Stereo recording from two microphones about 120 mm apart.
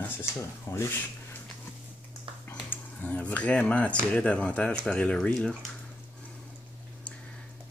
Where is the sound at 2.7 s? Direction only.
15° left (ahead or behind).